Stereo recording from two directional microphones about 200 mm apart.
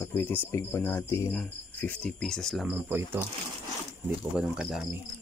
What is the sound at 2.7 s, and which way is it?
Speech, 10° right (ahead or behind).